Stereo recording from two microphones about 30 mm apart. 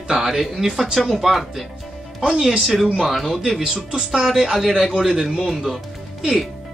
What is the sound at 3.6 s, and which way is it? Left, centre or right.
Speech, right.